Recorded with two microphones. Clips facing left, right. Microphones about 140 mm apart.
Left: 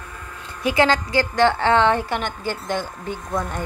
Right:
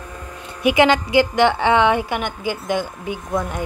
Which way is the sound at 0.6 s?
20° right (ahead or behind).